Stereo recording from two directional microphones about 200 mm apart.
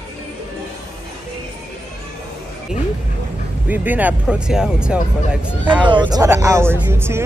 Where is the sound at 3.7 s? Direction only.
10° right (ahead or behind).